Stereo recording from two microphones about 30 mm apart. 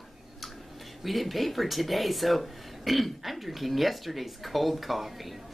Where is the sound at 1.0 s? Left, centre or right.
Centre.